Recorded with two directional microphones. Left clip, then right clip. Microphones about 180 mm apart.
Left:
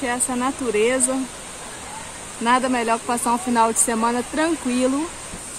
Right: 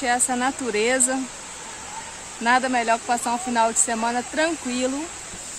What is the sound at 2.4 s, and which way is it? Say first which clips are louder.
Speech: left 1 dB; 20° right (ahead or behind).